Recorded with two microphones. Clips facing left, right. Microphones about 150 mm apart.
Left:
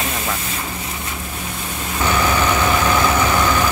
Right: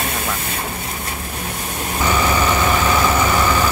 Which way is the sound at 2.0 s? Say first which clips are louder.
Even; 10° right (ahead or behind).